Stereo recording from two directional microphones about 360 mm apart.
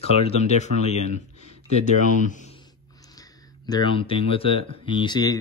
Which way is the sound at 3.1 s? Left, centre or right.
Centre.